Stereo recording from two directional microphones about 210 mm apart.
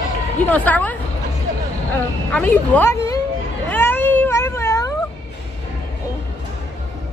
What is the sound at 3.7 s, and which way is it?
Cat, 10° left (ahead or behind).